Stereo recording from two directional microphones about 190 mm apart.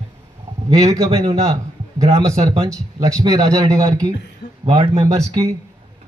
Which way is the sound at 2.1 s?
15° right (ahead or behind).